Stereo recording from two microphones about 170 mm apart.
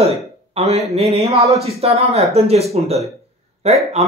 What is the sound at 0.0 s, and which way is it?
Speech, 35° right (ahead or behind).